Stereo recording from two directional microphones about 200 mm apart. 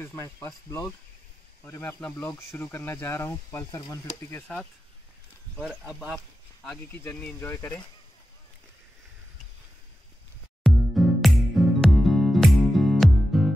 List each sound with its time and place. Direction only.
0.0 s speech: 15° left (ahead or behind)
10.6 s music: centre (ahead or behind)